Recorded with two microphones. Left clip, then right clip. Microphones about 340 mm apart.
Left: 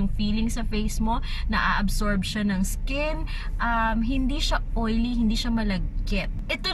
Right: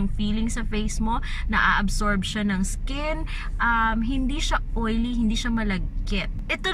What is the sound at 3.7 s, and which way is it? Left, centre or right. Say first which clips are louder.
Speech: right 1 dB; centre.